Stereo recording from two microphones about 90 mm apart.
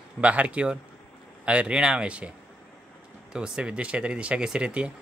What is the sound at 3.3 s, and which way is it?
Speech, 10° right (ahead or behind).